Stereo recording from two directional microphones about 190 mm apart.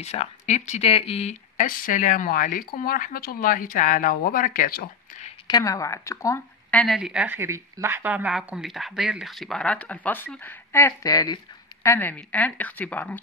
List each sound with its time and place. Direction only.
0.0 s speech: 35° left (ahead or behind)
5.5 s a woman's voice: 15° left (ahead or behind)
7.0 s speech: 5° right (ahead or behind)